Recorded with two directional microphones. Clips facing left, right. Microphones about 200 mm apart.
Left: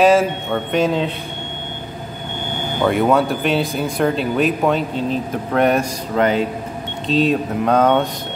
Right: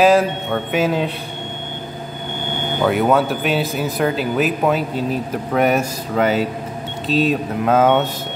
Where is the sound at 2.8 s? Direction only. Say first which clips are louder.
Left 1 dB; centre (ahead or behind).